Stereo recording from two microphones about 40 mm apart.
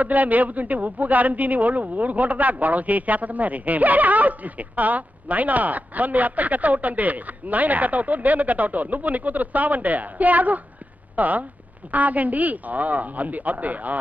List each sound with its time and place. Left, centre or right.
0.0 s a man's voice: right